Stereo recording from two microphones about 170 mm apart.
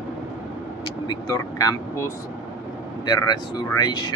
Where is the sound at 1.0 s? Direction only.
20° left (ahead or behind).